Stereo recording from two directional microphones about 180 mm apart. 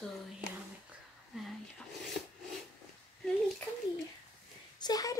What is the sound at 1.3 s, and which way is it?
Speech, 5° right (ahead or behind).